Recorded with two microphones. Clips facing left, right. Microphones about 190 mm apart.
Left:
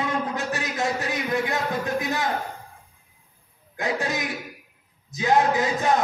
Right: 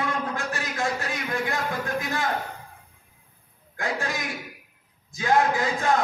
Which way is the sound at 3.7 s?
20° left (ahead or behind).